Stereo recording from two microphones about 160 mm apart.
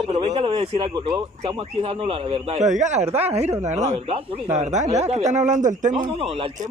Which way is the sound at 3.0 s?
15° right (ahead or behind).